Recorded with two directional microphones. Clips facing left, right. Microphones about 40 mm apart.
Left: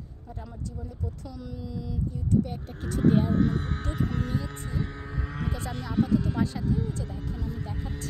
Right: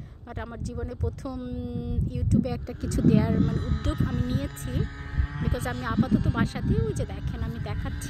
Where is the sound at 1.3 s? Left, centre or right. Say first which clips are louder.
Right 5 dB; right.